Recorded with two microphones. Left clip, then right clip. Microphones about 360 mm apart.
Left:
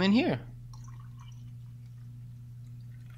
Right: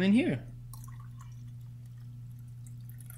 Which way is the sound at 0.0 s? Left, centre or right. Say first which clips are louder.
Left 2 dB; centre.